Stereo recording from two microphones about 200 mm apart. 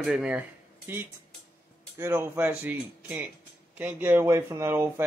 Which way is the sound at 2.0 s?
10° right (ahead or behind).